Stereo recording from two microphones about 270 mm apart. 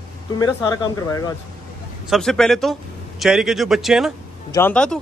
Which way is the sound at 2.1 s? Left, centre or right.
Centre.